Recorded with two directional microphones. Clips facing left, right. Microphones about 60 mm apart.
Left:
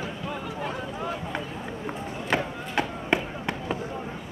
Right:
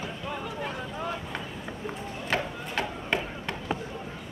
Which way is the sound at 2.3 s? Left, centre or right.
Centre.